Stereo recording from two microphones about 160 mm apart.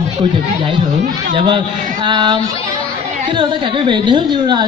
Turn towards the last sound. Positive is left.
turn(degrees=-30)  # may be behind; listen again after turning